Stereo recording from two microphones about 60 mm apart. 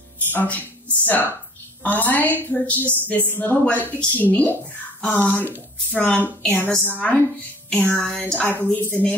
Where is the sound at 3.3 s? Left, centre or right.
Left.